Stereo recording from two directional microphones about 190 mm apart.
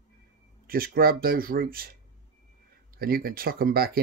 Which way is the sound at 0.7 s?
50° right (ahead or behind).